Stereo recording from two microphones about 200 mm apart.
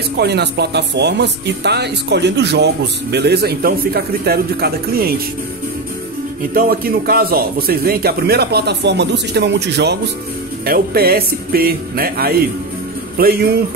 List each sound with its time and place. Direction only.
0.2 s speech: 55° right (ahead or behind)
6.5 s a man's voice: 50° right (ahead or behind)